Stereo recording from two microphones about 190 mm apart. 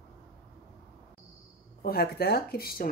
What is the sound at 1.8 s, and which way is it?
Speech, 55° left (ahead or behind).